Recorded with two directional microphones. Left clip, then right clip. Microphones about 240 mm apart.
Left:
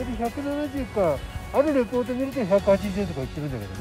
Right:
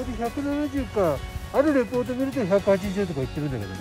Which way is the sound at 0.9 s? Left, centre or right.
Right.